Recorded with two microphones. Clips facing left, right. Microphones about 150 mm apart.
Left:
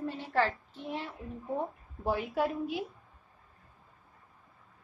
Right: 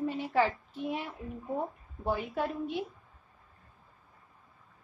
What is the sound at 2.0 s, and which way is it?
Speech, centre (ahead or behind).